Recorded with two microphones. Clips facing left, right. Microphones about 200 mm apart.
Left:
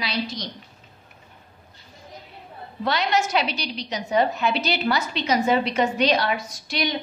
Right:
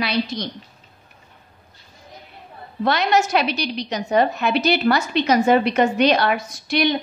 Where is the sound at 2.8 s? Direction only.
60° right (ahead or behind).